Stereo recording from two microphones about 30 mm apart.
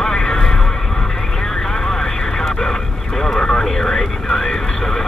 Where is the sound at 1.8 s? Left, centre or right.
Left.